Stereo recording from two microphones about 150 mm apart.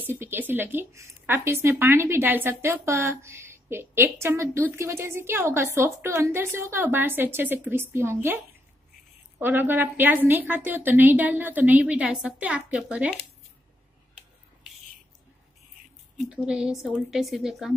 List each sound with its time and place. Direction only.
0.0 s a woman's voice: 15° right (ahead or behind)
9.4 s a woman's voice: 15° right (ahead or behind)
16.2 s a woman's voice: 5° right (ahead or behind)